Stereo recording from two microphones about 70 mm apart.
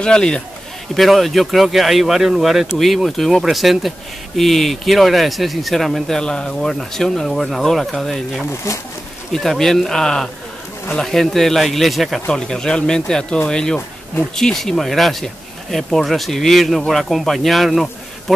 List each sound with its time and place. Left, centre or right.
0.0 s speech: centre
0.9 s speech: centre
8.7 s speech: left
9.3 s speech: centre
12.3 s speech: centre